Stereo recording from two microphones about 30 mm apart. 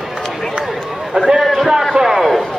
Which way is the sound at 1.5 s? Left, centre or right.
Centre.